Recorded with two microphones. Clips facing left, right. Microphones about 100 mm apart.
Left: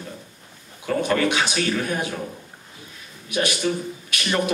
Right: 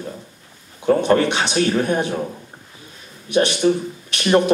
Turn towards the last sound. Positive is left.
turn(degrees=-30)  # may be behind; listen again after turning